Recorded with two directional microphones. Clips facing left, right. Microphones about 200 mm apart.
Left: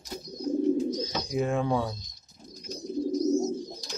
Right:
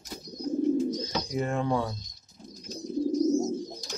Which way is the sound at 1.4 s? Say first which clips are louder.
Left 2 dB; 5° left (ahead or behind).